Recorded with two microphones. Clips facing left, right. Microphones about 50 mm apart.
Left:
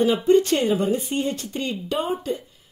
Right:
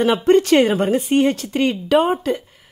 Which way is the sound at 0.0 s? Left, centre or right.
Right.